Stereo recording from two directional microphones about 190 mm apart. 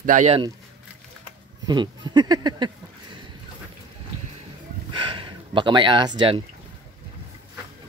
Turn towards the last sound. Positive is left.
turn(degrees=-25)  # may be behind; listen again after turning